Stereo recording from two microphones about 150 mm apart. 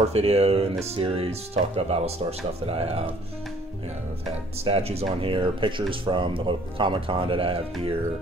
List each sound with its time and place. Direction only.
0.0 s speech: 45° right (ahead or behind)
4.6 s speech: 40° right (ahead or behind)